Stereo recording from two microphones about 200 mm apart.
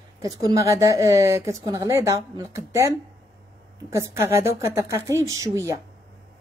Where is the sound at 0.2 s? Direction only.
15° right (ahead or behind).